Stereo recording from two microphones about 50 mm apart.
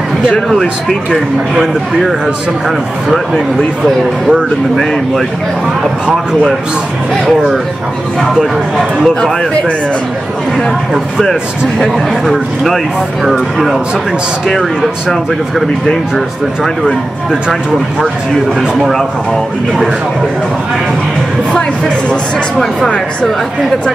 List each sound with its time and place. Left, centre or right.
0.5 s speech: centre
3.1 s speech: centre
12.3 s speech: centre
21.5 s speech: left